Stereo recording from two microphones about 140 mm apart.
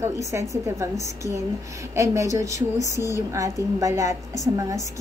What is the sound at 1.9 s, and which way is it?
A woman's voice, 20° right (ahead or behind).